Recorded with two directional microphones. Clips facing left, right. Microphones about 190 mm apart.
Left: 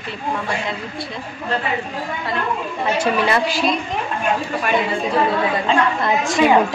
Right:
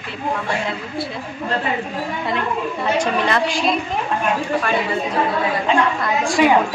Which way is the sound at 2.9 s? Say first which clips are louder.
Left 1 dB; 10° left (ahead or behind).